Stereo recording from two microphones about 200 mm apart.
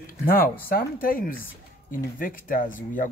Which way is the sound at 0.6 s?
45° left (ahead or behind).